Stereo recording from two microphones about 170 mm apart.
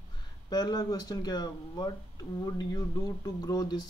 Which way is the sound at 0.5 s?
25° left (ahead or behind).